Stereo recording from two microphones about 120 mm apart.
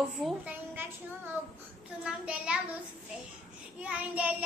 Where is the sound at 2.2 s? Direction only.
5° right (ahead or behind).